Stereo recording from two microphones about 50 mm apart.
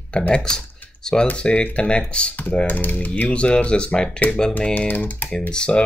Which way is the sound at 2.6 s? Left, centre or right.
Left.